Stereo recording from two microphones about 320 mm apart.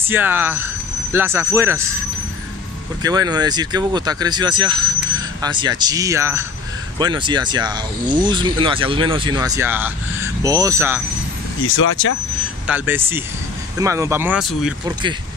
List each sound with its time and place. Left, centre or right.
0.0 s speech: centre
3.0 s speech: centre
11.6 s speech: left
12.6 s speech: centre